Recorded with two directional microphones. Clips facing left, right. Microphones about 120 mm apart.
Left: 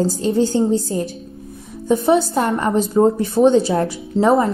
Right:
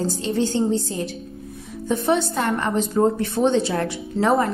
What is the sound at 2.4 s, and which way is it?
Speech, 30° left (ahead or behind).